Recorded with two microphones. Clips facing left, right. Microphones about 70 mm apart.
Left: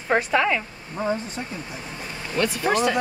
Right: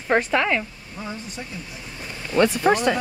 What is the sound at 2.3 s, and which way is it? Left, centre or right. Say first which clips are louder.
Speech: right 4 dB; right.